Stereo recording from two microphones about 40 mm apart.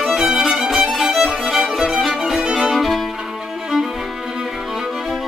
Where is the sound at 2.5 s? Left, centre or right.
Centre.